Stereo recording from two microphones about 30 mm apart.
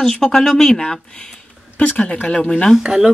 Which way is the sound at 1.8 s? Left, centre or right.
Left.